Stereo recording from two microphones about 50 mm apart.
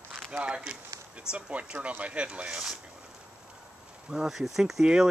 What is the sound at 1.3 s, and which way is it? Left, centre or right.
Speech, right.